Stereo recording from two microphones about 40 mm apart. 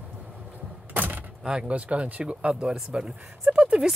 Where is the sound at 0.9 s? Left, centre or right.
Right.